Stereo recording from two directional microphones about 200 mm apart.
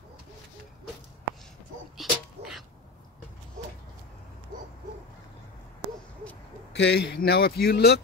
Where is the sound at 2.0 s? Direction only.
Centre (ahead or behind).